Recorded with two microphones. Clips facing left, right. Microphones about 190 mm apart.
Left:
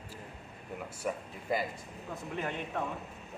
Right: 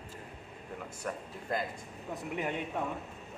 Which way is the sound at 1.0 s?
5° left (ahead or behind).